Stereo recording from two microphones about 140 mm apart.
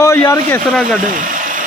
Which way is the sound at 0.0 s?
20° left (ahead or behind).